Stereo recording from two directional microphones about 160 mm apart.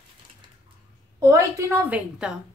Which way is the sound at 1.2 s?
20° right (ahead or behind).